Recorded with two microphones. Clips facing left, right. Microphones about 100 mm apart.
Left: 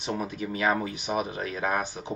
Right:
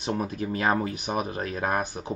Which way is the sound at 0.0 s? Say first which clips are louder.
Right 2 dB; 40° right (ahead or behind).